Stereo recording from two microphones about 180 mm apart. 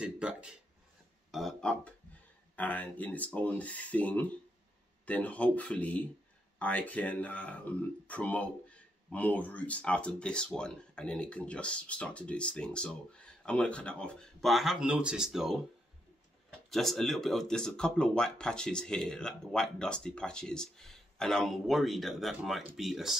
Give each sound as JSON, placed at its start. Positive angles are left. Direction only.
{"t": 0.0, "sound": "speech", "side_deg": -5}
{"t": 16.7, "sound": "speech", "side_deg": 0}